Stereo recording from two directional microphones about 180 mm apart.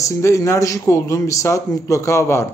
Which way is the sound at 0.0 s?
15° left (ahead or behind).